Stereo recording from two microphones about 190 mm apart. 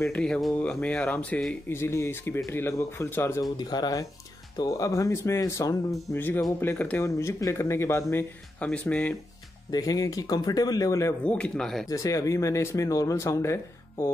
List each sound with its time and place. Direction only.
0.0 s speech: 5° left (ahead or behind)
9.7 s speech: 20° left (ahead or behind); by 11.9 s centre (ahead or behind)
11.9 s speech: 15° left (ahead or behind)